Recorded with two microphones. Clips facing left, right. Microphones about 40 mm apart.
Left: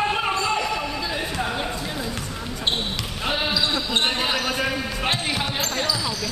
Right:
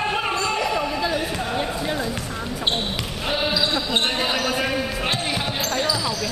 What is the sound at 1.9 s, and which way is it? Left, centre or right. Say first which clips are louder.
Basketball bounce: right 3 dB; centre.